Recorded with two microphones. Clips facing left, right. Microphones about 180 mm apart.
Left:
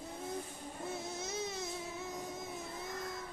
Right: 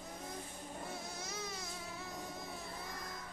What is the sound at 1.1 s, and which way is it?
Baby cry, 25° left (ahead or behind).